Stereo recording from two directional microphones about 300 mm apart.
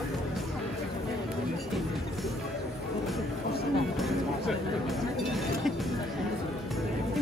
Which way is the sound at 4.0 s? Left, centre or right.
Centre.